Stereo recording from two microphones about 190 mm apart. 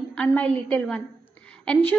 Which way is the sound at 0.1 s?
5° left (ahead or behind).